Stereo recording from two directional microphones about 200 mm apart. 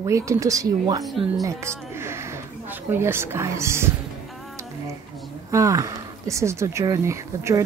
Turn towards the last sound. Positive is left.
turn(degrees=-15)  # may be behind; listen again after turning